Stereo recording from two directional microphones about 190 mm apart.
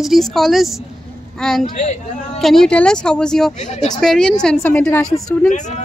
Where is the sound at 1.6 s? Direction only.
40° left (ahead or behind).